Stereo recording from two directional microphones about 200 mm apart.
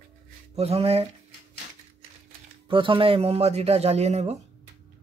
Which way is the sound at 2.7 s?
25° right (ahead or behind).